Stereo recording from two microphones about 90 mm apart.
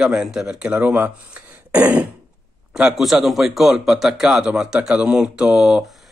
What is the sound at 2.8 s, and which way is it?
Speech, 5° right (ahead or behind).